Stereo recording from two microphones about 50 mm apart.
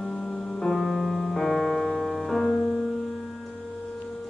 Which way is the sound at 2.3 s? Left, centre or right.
Centre.